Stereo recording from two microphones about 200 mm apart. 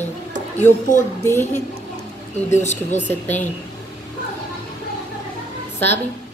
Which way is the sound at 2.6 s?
35° left (ahead or behind).